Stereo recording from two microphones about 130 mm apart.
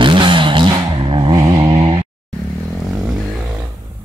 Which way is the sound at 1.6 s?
40° right (ahead or behind).